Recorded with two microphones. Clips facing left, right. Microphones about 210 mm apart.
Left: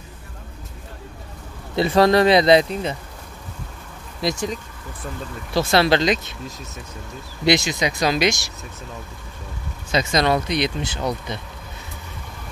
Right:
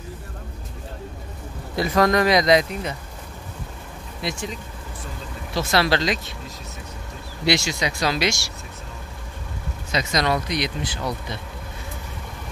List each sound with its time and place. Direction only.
1.8 s speech: 30° left (ahead or behind)
4.2 s speech: 40° left (ahead or behind)
5.6 s speech: 25° left (ahead or behind)
7.4 s speech: 20° left (ahead or behind)
9.9 s speech: 25° left (ahead or behind)